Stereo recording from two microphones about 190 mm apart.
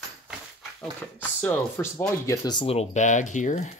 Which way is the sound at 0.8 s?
5° left (ahead or behind).